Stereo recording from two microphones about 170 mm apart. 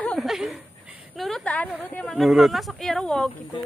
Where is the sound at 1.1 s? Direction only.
Centre (ahead or behind).